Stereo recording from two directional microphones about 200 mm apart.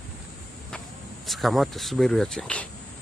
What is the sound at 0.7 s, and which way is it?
Speech, centre (ahead or behind).